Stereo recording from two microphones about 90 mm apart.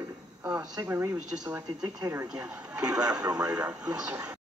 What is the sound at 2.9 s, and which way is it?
Speech, 10° right (ahead or behind).